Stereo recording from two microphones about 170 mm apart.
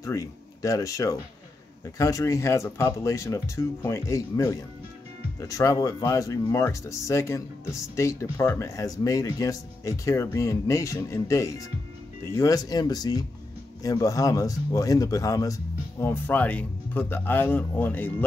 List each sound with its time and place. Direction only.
0.0 s speech: 20° left (ahead or behind)